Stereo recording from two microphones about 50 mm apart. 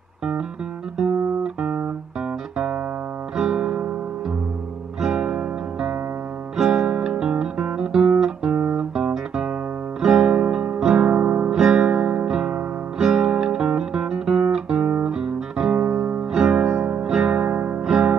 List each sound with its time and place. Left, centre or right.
2.5 s music: centre
5.2 s music: right
6.5 s guitar: centre
10.2 s music: right
11.1 s music: right
11.5 s music: centre
11.8 s music: right
12.3 s music: centre
13.0 s guitar: centre
15.8 s music: right
16.2 s music: centre